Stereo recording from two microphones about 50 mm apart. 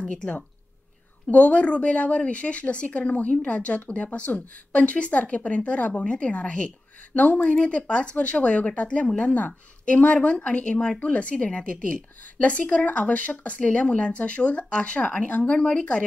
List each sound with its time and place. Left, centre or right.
0.0 s speech: centre
1.3 s a woman's voice: left